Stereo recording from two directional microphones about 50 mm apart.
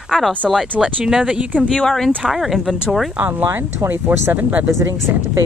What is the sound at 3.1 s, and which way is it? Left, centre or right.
Speech, right.